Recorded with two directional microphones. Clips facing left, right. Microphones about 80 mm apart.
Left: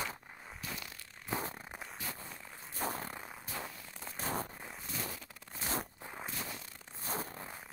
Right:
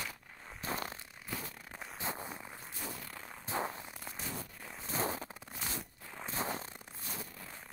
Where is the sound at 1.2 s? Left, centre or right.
Left.